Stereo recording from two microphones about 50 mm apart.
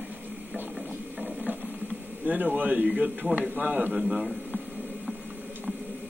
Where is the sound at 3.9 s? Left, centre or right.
Centre.